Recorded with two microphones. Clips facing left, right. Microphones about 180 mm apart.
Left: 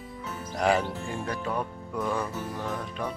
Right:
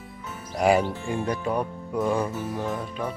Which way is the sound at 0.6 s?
10° right (ahead or behind).